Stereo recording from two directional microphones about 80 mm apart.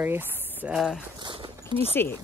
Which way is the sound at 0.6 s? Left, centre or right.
Centre.